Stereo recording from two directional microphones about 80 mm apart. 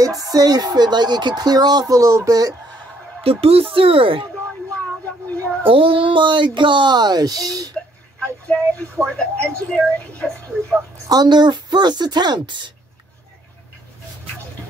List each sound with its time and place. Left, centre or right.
0.2 s speech: right
3.6 s speech: right
5.4 s child singing: right
5.7 s speech: right
8.5 s speech: centre
11.1 s speech: right